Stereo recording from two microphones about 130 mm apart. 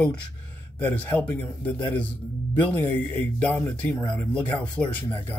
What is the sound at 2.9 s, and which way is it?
Speech, 10° left (ahead or behind).